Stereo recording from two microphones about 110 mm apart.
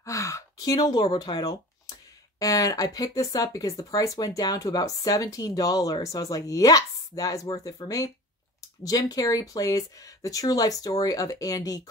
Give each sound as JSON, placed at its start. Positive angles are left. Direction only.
{"t": 0.0, "sound": "gasp", "side_deg": 30}
{"t": 1.1, "sound": "speech", "side_deg": 40}
{"t": 8.8, "sound": "speech", "side_deg": 35}